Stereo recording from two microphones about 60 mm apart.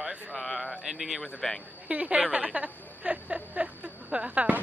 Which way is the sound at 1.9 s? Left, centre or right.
Right.